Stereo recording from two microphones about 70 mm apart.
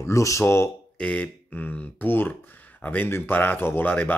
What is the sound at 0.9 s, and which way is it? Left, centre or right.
Speech, centre.